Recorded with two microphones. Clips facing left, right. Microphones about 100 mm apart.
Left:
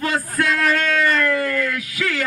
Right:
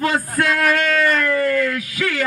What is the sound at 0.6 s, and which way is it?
Speech, 5° right (ahead or behind).